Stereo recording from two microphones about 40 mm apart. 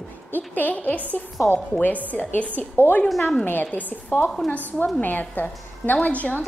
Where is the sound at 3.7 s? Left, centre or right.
Left.